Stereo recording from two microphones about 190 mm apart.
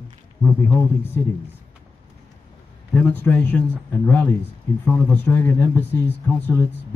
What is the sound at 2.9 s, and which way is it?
Speech, 10° left (ahead or behind).